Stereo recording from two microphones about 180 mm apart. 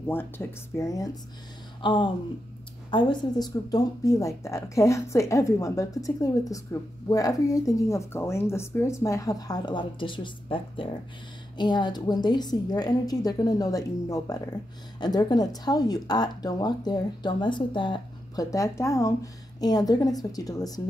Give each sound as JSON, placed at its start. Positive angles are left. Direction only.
{"t": 0.1, "sound": "speech", "side_deg": 10}